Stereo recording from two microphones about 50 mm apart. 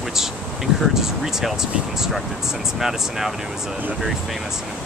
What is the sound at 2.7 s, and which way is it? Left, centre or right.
Speech, centre.